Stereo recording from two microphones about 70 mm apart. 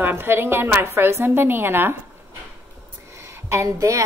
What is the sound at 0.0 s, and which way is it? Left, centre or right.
A woman's voice, right.